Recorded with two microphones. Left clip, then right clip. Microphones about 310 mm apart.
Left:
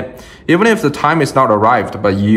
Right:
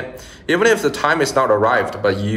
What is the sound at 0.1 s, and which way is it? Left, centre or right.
A man's voice, left.